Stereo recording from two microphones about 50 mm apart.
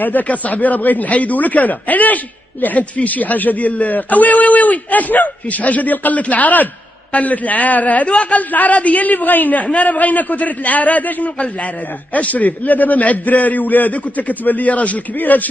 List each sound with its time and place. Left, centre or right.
0.0 s a man's voice: left